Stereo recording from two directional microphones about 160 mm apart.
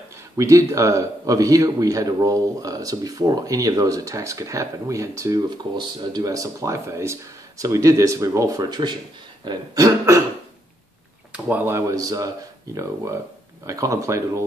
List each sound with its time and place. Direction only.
0.4 s a man's voice: 20° right (ahead or behind)
11.3 s a man's voice: 10° right (ahead or behind)